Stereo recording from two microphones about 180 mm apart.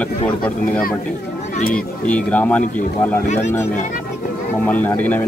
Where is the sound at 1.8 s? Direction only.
5° left (ahead or behind).